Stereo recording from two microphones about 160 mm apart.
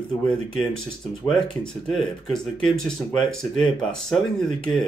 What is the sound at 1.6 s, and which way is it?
Speech, centre (ahead or behind).